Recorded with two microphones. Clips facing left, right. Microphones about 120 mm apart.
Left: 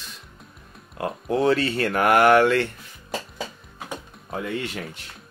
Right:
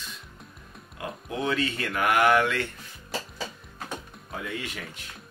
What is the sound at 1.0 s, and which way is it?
Speech, 40° left (ahead or behind).